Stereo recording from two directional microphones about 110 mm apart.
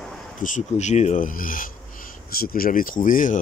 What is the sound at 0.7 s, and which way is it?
Speech, 90° left.